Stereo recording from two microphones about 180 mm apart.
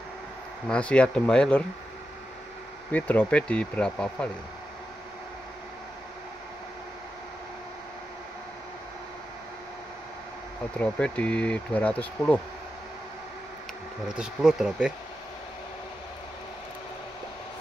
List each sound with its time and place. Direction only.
0.7 s speech: 5° left (ahead or behind)
2.9 s speech: 10° left (ahead or behind)
10.8 s speech: 5° left (ahead or behind)
14.1 s speech: 5° right (ahead or behind)